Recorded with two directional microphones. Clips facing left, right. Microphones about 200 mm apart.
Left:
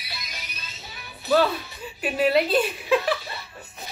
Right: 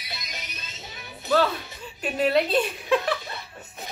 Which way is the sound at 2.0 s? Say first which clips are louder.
Left 1 dB; 5° left (ahead or behind).